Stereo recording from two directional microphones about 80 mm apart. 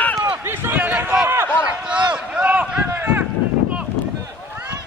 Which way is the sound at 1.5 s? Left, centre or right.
Centre.